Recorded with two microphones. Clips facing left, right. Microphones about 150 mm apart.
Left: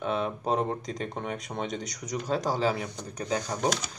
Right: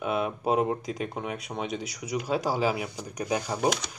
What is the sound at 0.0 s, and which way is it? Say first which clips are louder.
Speech: right 1 dB; 10° right (ahead or behind).